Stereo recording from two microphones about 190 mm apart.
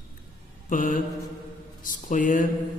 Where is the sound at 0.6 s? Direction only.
45° left (ahead or behind).